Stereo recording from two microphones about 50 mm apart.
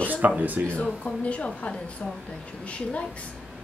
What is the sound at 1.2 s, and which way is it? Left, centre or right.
A woman's voice, left.